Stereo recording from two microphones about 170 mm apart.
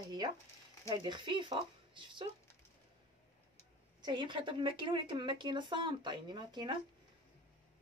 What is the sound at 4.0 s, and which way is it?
Speech, 25° right (ahead or behind).